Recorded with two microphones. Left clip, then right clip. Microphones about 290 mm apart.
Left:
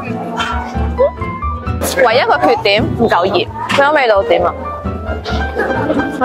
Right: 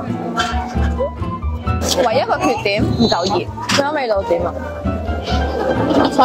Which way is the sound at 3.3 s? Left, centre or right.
Left.